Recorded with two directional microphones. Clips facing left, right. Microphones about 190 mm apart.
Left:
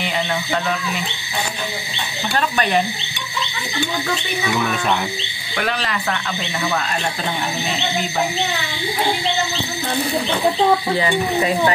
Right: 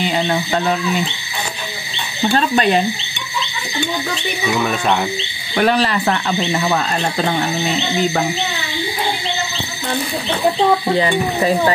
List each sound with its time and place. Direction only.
0.0 s speech: 35° right (ahead or behind)
2.2 s a sound: 30° right (ahead or behind)
5.6 s speech: 40° right (ahead or behind)
11.0 s speech: 30° right (ahead or behind)